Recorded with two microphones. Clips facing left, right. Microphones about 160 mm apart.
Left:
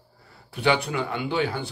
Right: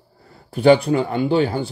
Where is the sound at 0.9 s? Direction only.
35° right (ahead or behind).